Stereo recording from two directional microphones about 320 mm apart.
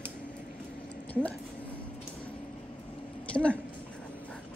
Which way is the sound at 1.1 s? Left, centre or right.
Centre.